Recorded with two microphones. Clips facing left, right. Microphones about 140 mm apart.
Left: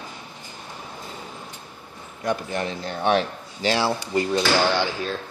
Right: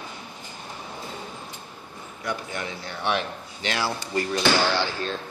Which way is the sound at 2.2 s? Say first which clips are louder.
Left 6 dB; 35° left (ahead or behind).